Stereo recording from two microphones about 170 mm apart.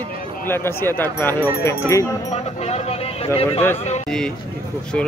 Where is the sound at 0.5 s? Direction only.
15° left (ahead or behind).